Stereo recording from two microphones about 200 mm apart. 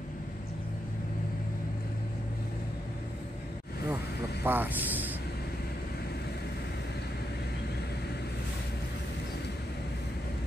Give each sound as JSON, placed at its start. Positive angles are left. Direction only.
{"t": 4.5, "sound": "speech", "side_deg": -10}